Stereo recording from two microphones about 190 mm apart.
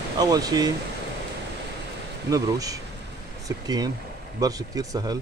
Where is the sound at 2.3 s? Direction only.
20° right (ahead or behind).